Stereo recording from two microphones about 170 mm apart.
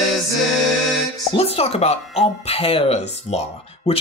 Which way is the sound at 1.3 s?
40° left (ahead or behind).